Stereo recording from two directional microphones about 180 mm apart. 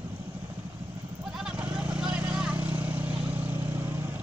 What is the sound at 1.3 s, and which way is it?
Vehicle, 5° right (ahead or behind).